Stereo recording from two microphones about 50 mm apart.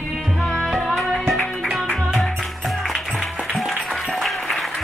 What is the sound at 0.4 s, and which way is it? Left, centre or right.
Music, centre.